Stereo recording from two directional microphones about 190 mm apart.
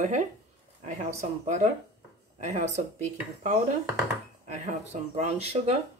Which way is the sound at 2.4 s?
40° right (ahead or behind).